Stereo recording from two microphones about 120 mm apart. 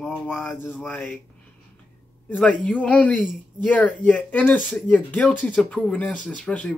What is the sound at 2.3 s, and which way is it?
Speech, 10° left (ahead or behind).